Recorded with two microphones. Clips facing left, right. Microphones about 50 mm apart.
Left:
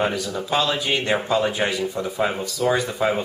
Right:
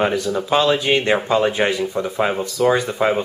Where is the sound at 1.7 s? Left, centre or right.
Centre.